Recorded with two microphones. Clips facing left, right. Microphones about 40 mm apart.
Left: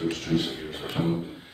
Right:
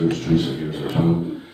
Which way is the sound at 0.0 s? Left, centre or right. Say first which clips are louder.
Right 7 dB; centre.